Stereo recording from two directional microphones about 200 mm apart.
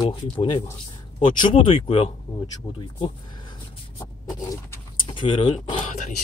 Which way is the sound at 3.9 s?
15° left (ahead or behind).